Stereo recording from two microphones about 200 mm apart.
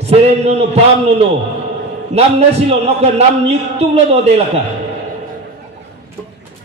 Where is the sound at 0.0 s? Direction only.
30° right (ahead or behind).